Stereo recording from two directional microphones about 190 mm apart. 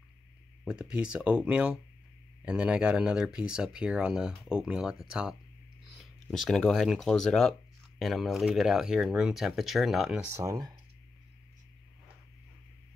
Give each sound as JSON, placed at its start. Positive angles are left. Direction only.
{"t": 0.7, "sound": "speech", "side_deg": -5}
{"t": 6.3, "sound": "speech", "side_deg": 0}
{"t": 10.3, "sound": "speech", "side_deg": -15}